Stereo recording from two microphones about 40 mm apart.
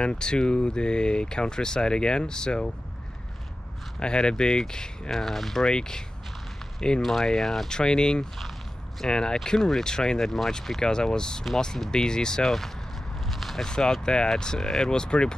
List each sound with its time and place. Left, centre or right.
0.0 s speech: left
4.0 s speech: left
5.1 s speech: centre
5.7 s speech: centre
7.0 s speech: centre
10.8 s speech: centre
13.3 s biting: centre
13.7 s speech: centre